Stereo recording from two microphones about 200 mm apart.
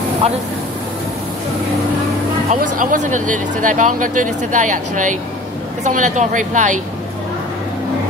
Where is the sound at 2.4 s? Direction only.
40° right (ahead or behind).